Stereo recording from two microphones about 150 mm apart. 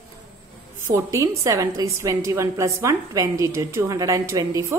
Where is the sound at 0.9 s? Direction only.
55° right (ahead or behind).